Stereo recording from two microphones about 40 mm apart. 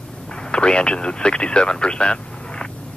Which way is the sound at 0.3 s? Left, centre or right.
Left.